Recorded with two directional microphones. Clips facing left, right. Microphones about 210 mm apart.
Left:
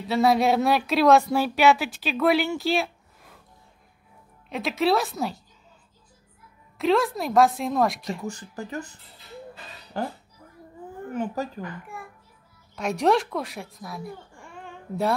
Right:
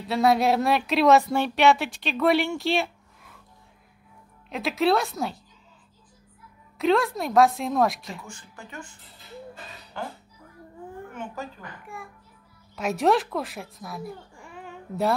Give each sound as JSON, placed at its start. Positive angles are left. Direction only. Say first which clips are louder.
{"t": 0.0, "sound": "speech", "louder": "left 1 dB", "side_deg": 0}
{"t": 4.5, "sound": "speech", "louder": "even", "side_deg": 0}
{"t": 6.8, "sound": "speech", "louder": "even", "side_deg": 0}
{"t": 8.2, "sound": "speech", "louder": "left 10 dB", "side_deg": 40}
{"t": 9.9, "sound": "speech", "louder": "left 5 dB", "side_deg": 40}
{"t": 11.1, "sound": "speech", "louder": "left 9 dB", "side_deg": 40}
{"t": 12.7, "sound": "speech", "louder": "even", "side_deg": 0}